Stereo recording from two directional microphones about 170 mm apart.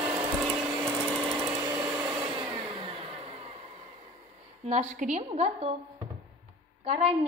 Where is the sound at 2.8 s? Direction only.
35° right (ahead or behind).